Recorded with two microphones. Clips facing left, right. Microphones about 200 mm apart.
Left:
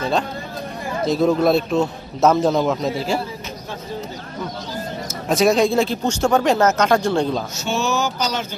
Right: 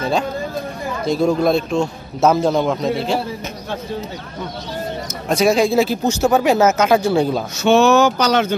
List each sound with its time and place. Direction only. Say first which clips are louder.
1.0 s speech: even; centre (ahead or behind)
5.3 s speech: right 1 dB; centre (ahead or behind)
7.5 s speech: right 10 dB; 65° right (ahead or behind)